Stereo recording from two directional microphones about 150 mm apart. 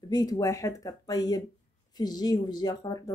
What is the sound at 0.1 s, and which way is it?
Speech, 25° left (ahead or behind).